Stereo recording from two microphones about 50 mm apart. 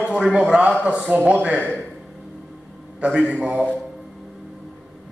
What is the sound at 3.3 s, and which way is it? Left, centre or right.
Speech, right.